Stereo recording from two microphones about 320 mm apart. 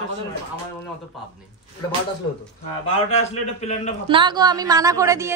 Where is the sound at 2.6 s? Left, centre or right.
Centre.